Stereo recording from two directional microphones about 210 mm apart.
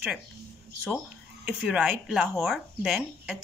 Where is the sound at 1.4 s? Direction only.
5° right (ahead or behind).